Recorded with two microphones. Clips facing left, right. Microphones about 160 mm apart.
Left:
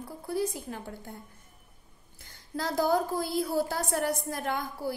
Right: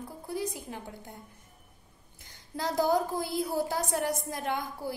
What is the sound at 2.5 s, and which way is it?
A woman's voice, 20° right (ahead or behind).